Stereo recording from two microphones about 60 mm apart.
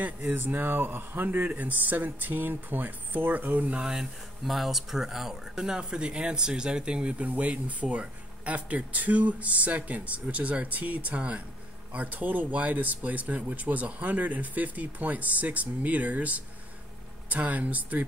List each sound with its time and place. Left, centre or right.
0.0 s a man's voice: right
3.8 s speech: centre; by 18.0 s right